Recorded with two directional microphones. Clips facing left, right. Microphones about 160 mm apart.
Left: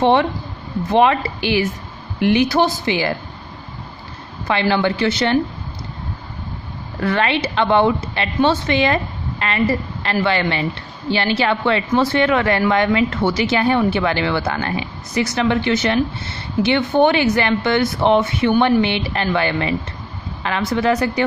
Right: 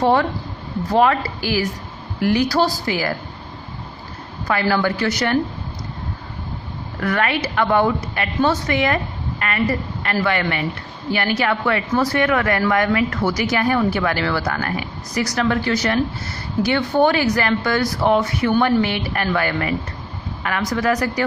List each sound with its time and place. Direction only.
0.0 s a woman's voice: 20° left (ahead or behind)
4.5 s a woman's voice: 25° left (ahead or behind)
7.0 s a woman's voice: 25° left (ahead or behind)